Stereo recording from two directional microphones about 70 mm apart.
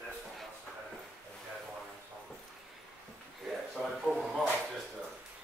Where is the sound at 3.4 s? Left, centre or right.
Centre.